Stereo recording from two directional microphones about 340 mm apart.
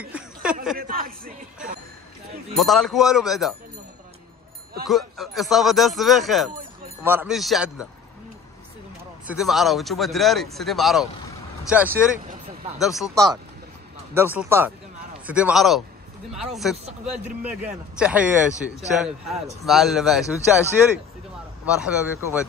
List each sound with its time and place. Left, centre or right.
0.0 s a sound: centre
0.7 s a sound: right
2.5 s speech: centre
4.8 s speech: centre
9.3 s speech: centre
18.5 s a man's voice: centre
21.6 s speech: centre